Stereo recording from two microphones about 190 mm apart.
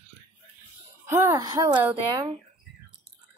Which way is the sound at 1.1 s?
15° right (ahead or behind).